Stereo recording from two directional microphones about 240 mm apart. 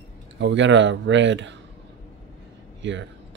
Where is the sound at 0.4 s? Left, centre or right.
Right.